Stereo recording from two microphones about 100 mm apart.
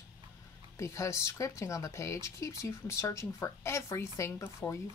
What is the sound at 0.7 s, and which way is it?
Speech, 30° left (ahead or behind).